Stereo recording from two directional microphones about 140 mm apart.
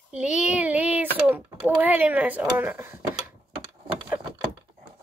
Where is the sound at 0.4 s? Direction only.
10° right (ahead or behind).